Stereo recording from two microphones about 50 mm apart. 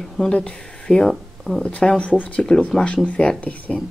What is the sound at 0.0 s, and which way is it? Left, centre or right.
Speech, centre.